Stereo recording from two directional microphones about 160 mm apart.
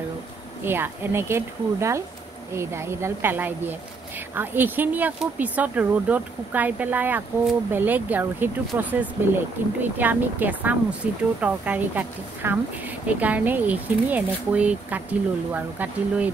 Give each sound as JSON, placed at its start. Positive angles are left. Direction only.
{"t": 0.7, "sound": "a woman's voice", "side_deg": -15}